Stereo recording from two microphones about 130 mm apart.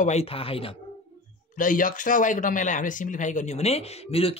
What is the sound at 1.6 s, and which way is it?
Speech, 90° left.